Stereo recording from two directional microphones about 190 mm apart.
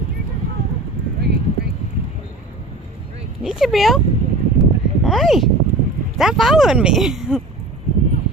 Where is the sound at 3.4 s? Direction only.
Centre (ahead or behind).